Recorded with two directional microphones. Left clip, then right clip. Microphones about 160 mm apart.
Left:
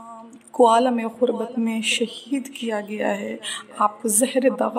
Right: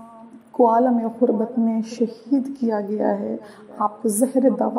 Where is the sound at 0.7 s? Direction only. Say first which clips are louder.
Even; 45° left (ahead or behind).